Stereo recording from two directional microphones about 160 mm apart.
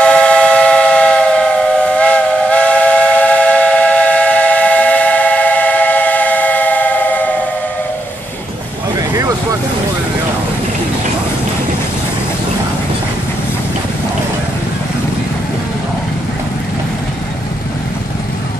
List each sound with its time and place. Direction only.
0.0 s steam whistle: 5° left (ahead or behind)
9.1 s vehicle: 20° right (ahead or behind)